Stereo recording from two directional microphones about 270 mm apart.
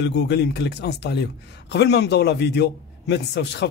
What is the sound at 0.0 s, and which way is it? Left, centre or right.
A man's voice, left.